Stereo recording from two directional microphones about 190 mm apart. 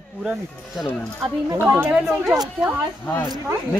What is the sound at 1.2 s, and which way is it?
Speech, 15° right (ahead or behind).